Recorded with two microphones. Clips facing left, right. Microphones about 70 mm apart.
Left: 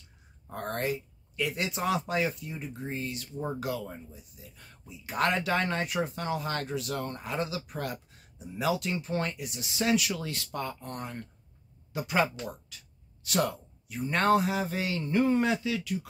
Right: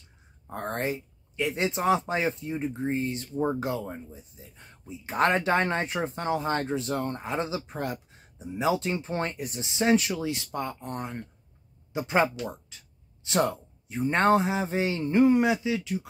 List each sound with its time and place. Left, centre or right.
0.5 s speech: right